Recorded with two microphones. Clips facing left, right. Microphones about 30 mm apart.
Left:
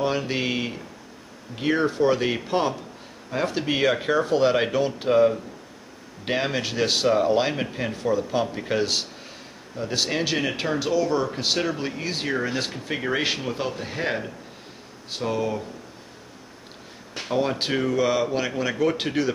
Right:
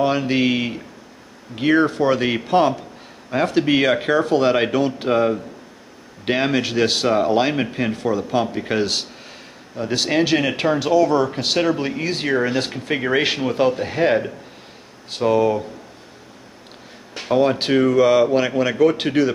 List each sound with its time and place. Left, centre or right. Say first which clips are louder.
0.0 s speech: right 6 dB; centre
17.1 s speech: right 7 dB; centre